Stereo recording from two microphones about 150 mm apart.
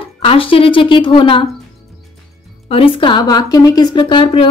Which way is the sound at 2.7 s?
35° left (ahead or behind).